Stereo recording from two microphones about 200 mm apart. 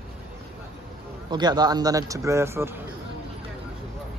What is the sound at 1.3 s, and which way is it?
A man's voice, 20° right (ahead or behind).